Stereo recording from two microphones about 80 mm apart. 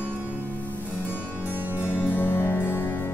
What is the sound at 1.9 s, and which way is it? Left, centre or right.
Music, left.